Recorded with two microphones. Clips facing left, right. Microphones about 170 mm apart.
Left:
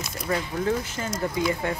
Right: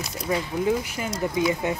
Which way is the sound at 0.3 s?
10° right (ahead or behind).